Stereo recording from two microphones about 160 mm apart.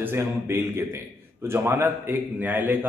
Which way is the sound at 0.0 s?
15° right (ahead or behind).